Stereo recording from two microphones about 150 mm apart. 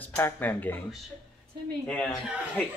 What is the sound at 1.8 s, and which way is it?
Speech, 10° left (ahead or behind).